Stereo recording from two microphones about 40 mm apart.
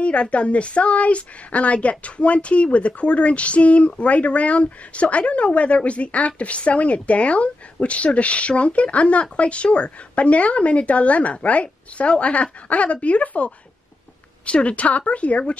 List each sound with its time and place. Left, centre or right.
0.0 s a woman's voice: left